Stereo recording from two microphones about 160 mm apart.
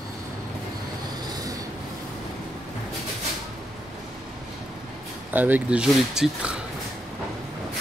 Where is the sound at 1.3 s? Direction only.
20° right (ahead or behind).